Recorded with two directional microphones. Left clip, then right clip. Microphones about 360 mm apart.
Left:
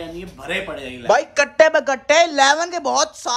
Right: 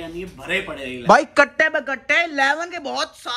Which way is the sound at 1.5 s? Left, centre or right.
Centre.